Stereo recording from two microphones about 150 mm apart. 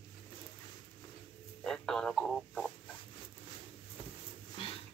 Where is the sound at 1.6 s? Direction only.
5° left (ahead or behind).